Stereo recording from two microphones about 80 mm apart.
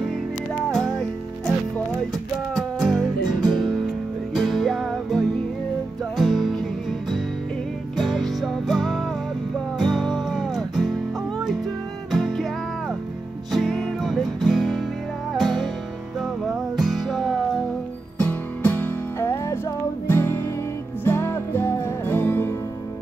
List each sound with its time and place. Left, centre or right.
0.7 s music: centre
2.5 s music: centre
4.3 s music: centre
8.0 s music: centre
12.1 s music: centre
13.5 s music: centre
16.7 s music: centre
18.1 s music: centre
19.1 s music: left